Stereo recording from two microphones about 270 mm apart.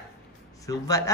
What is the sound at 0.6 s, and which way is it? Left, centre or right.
Speech, centre.